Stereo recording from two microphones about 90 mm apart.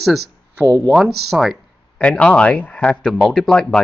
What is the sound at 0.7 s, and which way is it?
Speech, 20° left (ahead or behind).